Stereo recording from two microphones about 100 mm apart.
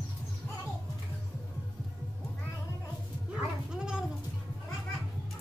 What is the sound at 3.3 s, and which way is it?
Goat, 10° right (ahead or behind).